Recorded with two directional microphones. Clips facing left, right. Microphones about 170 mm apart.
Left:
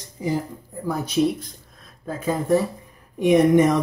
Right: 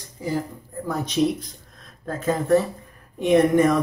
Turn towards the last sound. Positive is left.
turn(degrees=20)  # may be behind; listen again after turning